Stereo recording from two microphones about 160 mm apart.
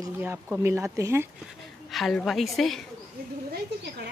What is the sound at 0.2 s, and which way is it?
Speech, 15° right (ahead or behind).